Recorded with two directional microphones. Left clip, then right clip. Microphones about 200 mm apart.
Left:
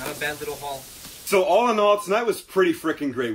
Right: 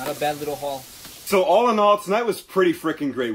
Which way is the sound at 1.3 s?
40° right (ahead or behind).